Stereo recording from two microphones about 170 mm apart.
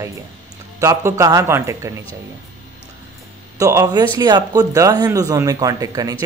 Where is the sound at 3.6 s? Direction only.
20° right (ahead or behind).